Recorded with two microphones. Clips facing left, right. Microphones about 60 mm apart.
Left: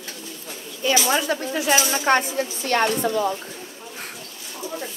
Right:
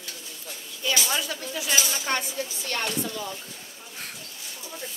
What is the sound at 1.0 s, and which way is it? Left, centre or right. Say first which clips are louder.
Speech: left 8 dB; left.